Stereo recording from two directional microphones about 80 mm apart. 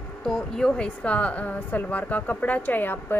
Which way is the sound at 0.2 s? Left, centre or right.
Centre.